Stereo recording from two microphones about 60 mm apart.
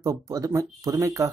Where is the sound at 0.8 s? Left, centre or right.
Right.